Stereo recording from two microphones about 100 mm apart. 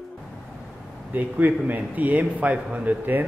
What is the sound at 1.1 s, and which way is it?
A man's voice, 15° right (ahead or behind).